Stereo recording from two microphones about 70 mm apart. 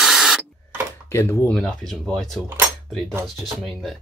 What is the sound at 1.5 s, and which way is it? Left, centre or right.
Speech, centre.